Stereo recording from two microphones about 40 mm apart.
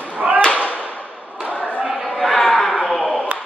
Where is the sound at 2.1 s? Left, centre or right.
Centre.